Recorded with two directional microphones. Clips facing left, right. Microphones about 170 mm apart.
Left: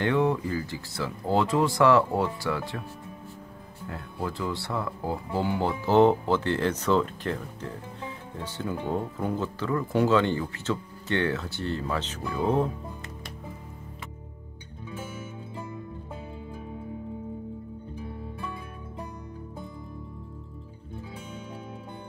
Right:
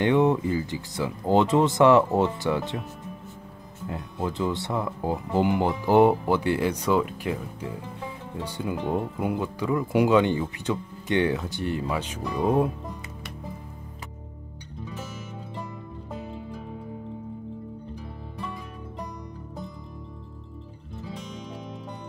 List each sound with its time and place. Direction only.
0.0 s speech: 20° right (ahead or behind)
3.8 s speech: 20° right (ahead or behind)